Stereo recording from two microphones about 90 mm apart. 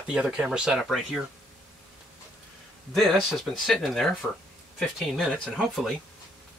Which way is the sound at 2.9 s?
Centre (ahead or behind).